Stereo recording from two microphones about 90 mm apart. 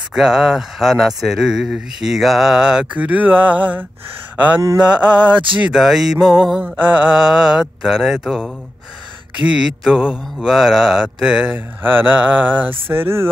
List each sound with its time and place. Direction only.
0.1 s speech: 5° right (ahead or behind)
4.7 s mantra: 10° right (ahead or behind)
5.6 s speech: 5° right (ahead or behind)
6.8 s mantra: 15° right (ahead or behind)
9.5 s mantra: 5° right (ahead or behind)
11.5 s speech: 20° right (ahead or behind)